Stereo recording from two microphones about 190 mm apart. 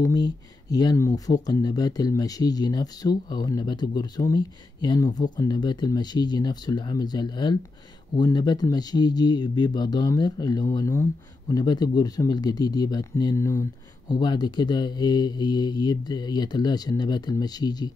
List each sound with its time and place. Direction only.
0.0 s speech: 20° left (ahead or behind)